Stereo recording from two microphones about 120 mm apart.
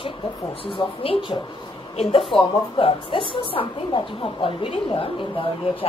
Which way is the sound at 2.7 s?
45° left (ahead or behind).